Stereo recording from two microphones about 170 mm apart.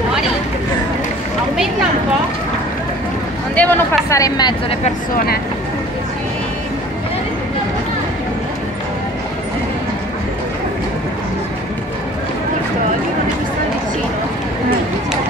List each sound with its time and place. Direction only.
3.5 s speech: 10° left (ahead or behind)
4.8 s speech: 60° left (ahead or behind)